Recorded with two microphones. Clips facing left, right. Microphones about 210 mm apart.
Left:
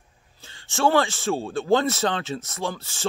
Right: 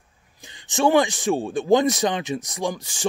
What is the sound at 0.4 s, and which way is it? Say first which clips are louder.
Speech: right 2 dB; 15° right (ahead or behind).